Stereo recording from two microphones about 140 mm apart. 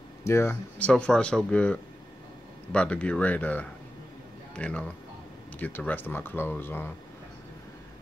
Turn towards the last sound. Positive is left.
turn(degrees=15)  # may be behind; listen again after turning